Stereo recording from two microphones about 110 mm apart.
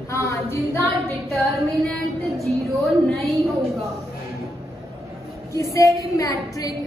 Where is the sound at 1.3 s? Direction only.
Centre (ahead or behind).